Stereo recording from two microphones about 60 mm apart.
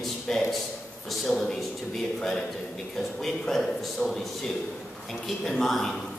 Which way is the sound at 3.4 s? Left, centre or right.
Centre.